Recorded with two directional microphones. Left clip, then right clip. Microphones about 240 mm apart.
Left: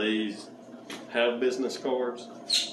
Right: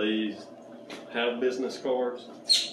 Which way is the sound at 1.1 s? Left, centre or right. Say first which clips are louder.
Left 2 dB; left.